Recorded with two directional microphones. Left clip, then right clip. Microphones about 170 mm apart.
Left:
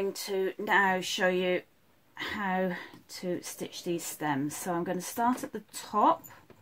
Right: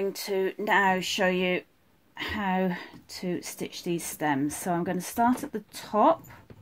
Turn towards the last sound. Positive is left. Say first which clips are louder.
# right 3 dB
turn(degrees=-40)  # may be behind; listen again after turning